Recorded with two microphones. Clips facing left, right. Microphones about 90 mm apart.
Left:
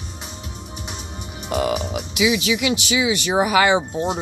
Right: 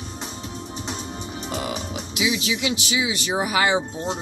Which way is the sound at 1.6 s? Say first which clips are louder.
Left 6 dB; 75° left (ahead or behind).